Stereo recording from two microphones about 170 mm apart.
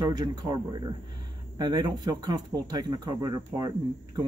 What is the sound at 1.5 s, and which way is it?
Speech, 25° right (ahead or behind).